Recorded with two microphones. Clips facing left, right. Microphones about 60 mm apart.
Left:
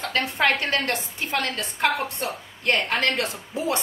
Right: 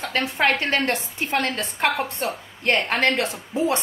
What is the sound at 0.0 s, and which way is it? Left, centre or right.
A woman's voice, right.